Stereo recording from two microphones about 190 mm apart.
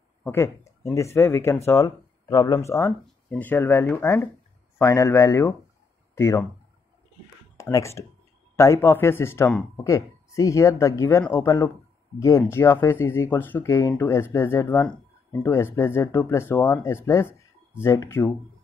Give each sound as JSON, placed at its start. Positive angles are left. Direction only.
{"t": 0.3, "sound": "speech", "side_deg": 15}
{"t": 7.5, "sound": "speech", "side_deg": 15}